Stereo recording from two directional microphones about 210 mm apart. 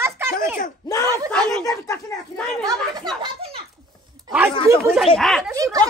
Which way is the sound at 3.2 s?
30° right (ahead or behind).